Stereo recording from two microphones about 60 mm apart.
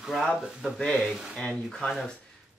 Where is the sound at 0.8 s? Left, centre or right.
Centre.